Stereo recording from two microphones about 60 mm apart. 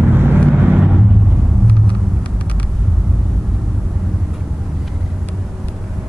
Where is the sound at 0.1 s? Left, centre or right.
Right.